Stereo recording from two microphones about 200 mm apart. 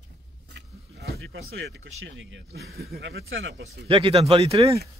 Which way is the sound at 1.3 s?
65° right (ahead or behind).